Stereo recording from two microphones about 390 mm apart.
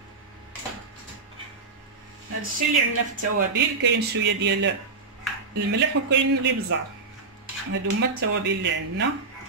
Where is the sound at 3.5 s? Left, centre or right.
Right.